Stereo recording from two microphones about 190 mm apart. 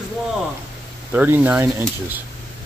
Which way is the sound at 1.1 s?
10° right (ahead or behind).